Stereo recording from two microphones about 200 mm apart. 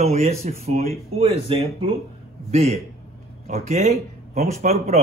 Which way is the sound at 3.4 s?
30° right (ahead or behind).